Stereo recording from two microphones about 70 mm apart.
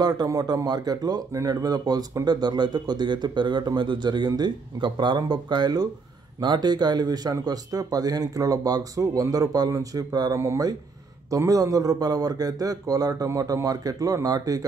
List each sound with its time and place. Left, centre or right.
0.0 s speech: right
1.3 s speech: right
2.2 s speech: right
10.3 s speech: right
11.2 s speech: right